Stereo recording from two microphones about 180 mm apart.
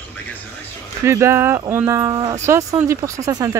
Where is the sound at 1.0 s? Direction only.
15° right (ahead or behind).